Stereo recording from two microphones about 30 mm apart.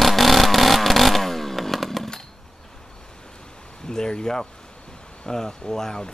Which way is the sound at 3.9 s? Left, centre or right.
Left.